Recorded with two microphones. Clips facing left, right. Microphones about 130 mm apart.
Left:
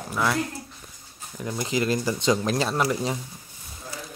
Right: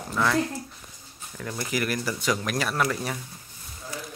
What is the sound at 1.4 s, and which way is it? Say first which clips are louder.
Speech: left 3 dB; 20° left (ahead or behind).